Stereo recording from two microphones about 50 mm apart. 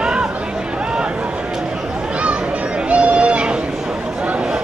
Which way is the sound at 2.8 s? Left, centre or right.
Right.